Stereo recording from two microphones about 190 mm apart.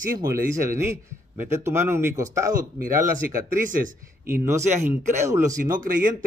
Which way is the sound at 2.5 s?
45° right (ahead or behind).